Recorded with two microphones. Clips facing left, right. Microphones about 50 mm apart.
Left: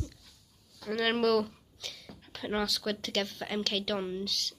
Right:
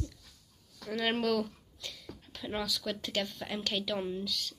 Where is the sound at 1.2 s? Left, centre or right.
Centre.